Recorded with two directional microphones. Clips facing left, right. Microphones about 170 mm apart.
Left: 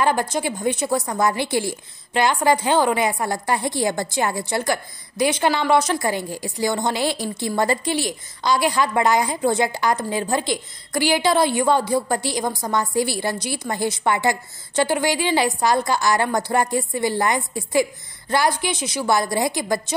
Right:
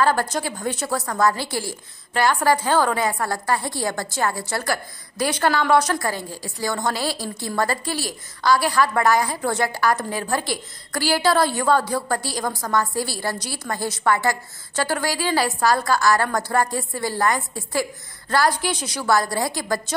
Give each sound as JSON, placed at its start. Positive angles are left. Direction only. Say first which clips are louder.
{"t": 0.0, "sound": "a woman's voice", "louder": "even", "side_deg": 15}